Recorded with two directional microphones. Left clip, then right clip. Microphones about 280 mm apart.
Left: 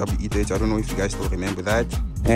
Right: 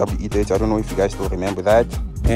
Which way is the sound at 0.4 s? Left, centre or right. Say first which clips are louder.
Right 5 dB; right.